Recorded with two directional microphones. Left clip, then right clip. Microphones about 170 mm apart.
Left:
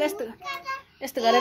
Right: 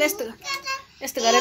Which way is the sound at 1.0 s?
20° left (ahead or behind).